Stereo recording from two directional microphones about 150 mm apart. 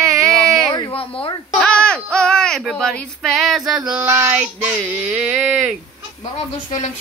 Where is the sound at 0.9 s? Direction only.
35° left (ahead or behind).